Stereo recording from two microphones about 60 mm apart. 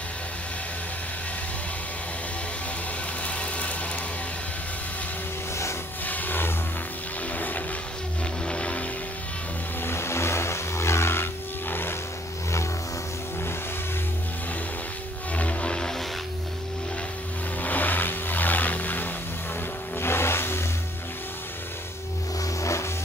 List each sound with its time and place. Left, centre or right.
3.3 s vehicle: left
6.0 s a sound: left
7.3 s vehicle: left
9.8 s vehicle: left
15.3 s music: centre
17.6 s vehicle: left
20.0 s vehicle: left
22.4 s vehicle: left